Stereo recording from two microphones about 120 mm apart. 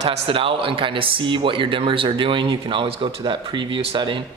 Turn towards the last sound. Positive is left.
turn(degrees=-45)  # may be behind; listen again after turning